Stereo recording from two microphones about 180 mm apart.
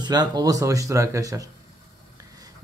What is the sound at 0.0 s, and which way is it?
Speech, 25° right (ahead or behind).